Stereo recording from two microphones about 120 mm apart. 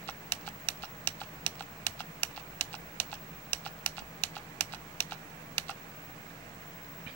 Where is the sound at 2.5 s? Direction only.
15° left (ahead or behind).